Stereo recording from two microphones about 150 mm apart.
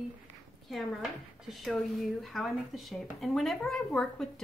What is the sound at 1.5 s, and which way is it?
Speech, centre (ahead or behind).